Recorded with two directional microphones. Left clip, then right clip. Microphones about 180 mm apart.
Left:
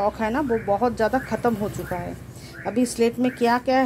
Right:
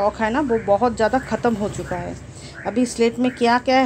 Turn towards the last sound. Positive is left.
turn(degrees=0)  # may be behind; listen again after turning